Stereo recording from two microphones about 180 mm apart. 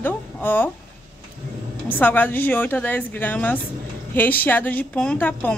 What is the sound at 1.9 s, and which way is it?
A woman's voice, 10° left (ahead or behind).